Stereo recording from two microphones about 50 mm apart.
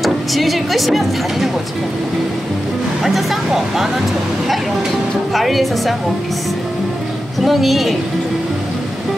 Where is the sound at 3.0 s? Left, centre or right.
Centre.